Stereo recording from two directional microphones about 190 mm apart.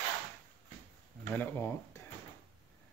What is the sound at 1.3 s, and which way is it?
Speech, 10° left (ahead or behind).